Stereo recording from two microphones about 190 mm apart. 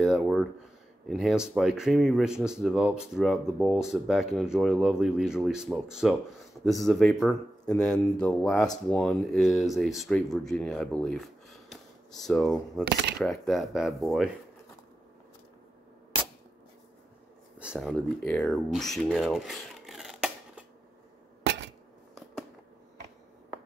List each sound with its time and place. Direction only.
0.0 s speech: centre (ahead or behind)
12.8 s speech: 60° right (ahead or behind)
13.2 s speech: centre (ahead or behind)
17.6 s speech: 5° right (ahead or behind)